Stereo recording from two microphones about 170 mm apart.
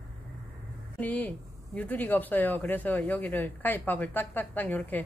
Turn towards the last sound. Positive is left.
turn(degrees=10)  # may be behind; listen again after turning